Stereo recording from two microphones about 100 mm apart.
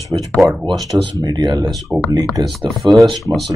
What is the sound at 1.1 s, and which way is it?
Speech, 40° right (ahead or behind).